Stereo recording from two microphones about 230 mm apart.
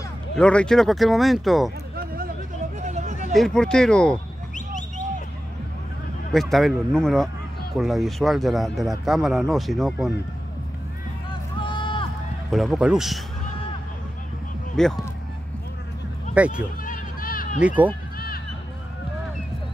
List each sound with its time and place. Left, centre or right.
0.4 s speech: centre
2.8 s a sound: right
3.3 s speech: centre
4.6 s a sound: left
6.3 s speech: centre
11.6 s vehicle: left
12.4 s speech: centre
14.8 s speech: centre
16.3 s speech: centre
16.8 s a sound: left
17.6 s speech: centre